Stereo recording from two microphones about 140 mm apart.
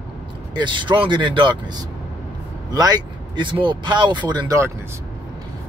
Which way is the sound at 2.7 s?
25° right (ahead or behind).